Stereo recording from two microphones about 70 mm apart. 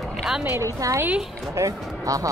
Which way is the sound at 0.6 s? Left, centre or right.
Right.